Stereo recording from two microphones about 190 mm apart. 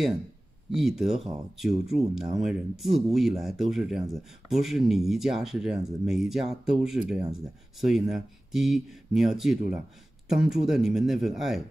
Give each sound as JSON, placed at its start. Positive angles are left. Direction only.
{"t": 0.7, "sound": "speech", "side_deg": 0}